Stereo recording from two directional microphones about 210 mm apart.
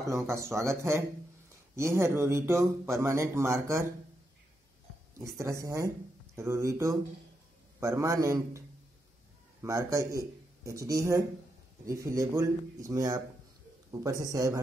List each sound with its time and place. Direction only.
0.0 s speech: 15° right (ahead or behind)
5.2 s speech: 15° right (ahead or behind)